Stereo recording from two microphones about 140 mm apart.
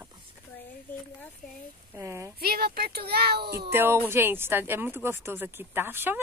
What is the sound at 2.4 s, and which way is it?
Speech, 90° right.